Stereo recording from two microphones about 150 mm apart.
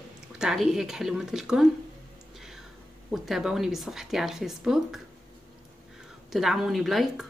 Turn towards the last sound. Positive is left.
turn(degrees=0)  # may be behind; listen again after turning